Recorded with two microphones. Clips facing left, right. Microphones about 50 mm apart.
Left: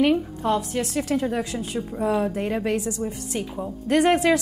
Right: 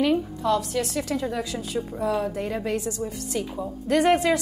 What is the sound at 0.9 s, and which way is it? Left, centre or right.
Speech, left.